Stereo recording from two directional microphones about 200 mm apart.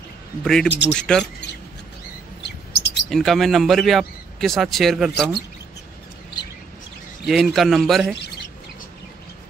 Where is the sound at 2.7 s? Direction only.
55° left (ahead or behind).